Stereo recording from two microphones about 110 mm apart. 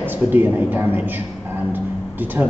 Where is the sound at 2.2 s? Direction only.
15° right (ahead or behind).